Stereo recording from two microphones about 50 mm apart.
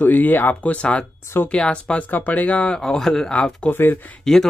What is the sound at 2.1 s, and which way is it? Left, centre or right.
Speech, left.